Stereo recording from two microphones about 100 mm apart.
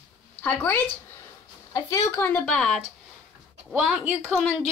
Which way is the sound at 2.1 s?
25° left (ahead or behind).